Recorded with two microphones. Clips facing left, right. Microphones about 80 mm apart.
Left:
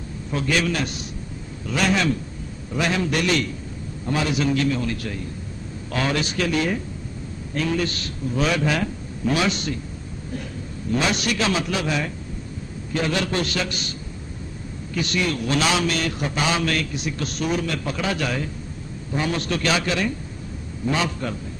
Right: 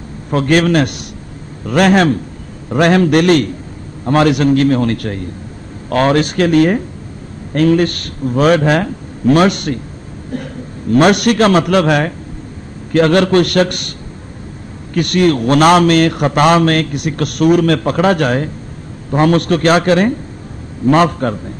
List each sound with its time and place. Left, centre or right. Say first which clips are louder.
0.3 s a man's voice: right 11 dB; right
4.0 s a man's voice: right 11 dB; right
15.0 s a man's voice: right 12 dB; right